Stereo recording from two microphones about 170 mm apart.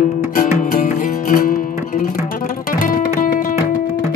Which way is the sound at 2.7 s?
55° left (ahead or behind).